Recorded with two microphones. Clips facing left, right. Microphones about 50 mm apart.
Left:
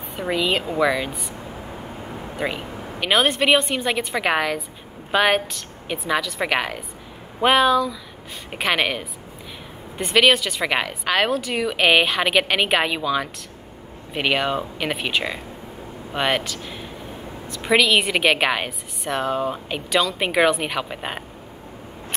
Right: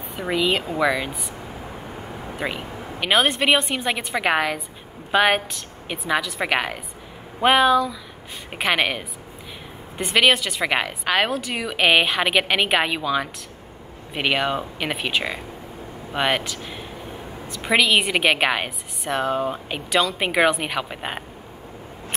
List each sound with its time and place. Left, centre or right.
0.2 s a woman's voice: centre
2.3 s a sound: centre
3.2 s a woman's voice: centre